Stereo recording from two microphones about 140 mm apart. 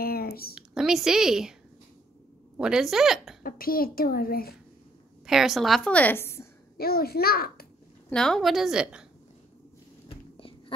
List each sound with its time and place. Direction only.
0.0 s a sound: 90° left
0.6 s a woman's voice: 5° right (ahead or behind)
2.5 s a woman's voice: 5° right (ahead or behind)
3.4 s a woman's voice: 90° left
5.2 s a woman's voice: 5° right (ahead or behind); by 6.4 s 15° left (ahead or behind)
6.8 s a woman's voice: 90° left
8.1 s a woman's voice: 5° left (ahead or behind)
10.0 s whispering: 40° left (ahead or behind)